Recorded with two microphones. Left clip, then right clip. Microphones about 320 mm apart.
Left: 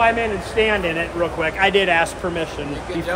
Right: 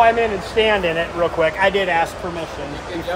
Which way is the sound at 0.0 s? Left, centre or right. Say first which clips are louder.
Right 3 dB; centre.